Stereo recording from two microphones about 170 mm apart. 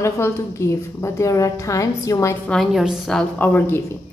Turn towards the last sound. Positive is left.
turn(degrees=15)  # may be behind; listen again after turning